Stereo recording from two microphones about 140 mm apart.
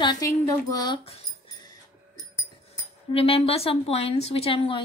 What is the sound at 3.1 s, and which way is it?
A woman's voice, 45° left (ahead or behind).